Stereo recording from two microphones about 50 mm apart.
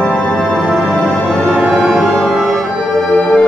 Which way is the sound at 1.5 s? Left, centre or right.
Right.